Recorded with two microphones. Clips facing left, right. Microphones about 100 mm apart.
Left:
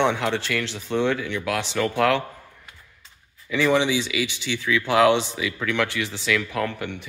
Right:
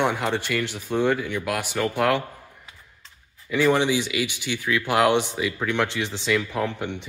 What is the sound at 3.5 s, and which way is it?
Speech, 15° right (ahead or behind).